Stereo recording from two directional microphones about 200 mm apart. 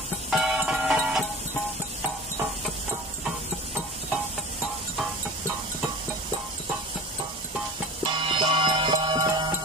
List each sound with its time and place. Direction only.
0.3 s music: 5° right (ahead or behind)
8.0 s music: 25° right (ahead or behind)